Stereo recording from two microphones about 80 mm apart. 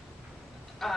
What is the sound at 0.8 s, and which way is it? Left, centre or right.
Speech, centre.